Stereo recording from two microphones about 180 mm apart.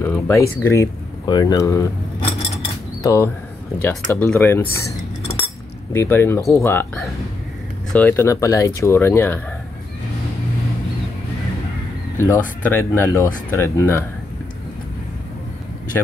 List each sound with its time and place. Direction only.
0.0 s speech: 10° left (ahead or behind)
2.1 s a sound: 30° left (ahead or behind)
3.0 s speech: 15° left (ahead or behind)
4.2 s speech: 5° left (ahead or behind)
5.2 s cutlery: 30° left (ahead or behind)
5.9 s speech: 15° left (ahead or behind)
12.2 s speech: 15° left (ahead or behind)